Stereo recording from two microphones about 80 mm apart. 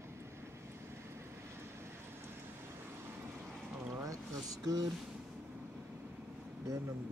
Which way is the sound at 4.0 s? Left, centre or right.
Right.